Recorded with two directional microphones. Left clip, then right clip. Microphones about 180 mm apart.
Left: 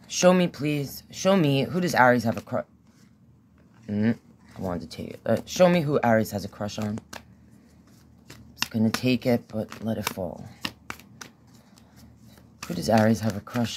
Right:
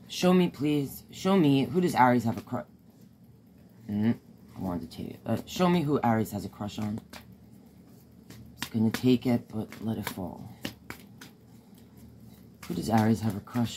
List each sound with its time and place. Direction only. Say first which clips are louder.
0.1 s speech: left 6 dB; 55° left (ahead or behind)
3.9 s speech: left 3 dB; 70° left (ahead or behind)
8.7 s speech: even; 65° left (ahead or behind)
12.5 s speech: left 6 dB; 60° left (ahead or behind)